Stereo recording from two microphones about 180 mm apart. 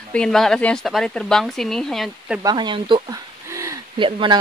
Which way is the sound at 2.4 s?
25° right (ahead or behind).